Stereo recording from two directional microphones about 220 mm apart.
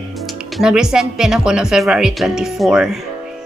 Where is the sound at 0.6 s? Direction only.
Centre (ahead or behind).